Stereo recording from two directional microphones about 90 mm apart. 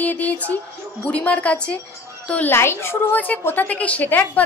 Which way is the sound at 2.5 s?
30° left (ahead or behind).